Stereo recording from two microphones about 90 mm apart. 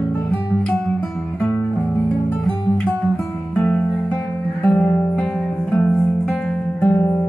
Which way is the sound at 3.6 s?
25° left (ahead or behind).